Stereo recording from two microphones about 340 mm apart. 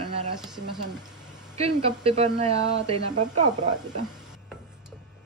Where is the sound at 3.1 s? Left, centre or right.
Right.